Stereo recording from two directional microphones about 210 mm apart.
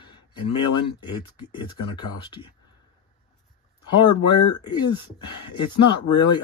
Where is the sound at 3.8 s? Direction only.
20° left (ahead or behind).